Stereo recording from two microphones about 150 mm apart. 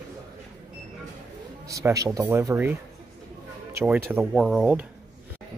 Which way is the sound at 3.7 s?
15° right (ahead or behind).